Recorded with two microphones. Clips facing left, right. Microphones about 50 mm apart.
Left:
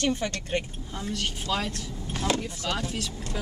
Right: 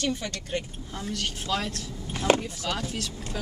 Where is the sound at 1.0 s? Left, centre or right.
Centre.